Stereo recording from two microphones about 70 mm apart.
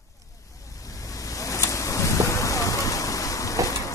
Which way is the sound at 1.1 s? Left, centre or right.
Left.